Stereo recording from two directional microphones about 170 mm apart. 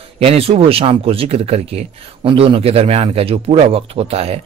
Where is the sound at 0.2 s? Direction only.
35° right (ahead or behind).